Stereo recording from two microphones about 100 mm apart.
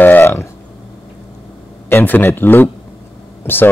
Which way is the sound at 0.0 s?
20° left (ahead or behind).